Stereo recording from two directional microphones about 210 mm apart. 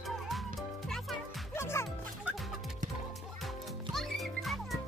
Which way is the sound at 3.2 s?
Centre (ahead or behind).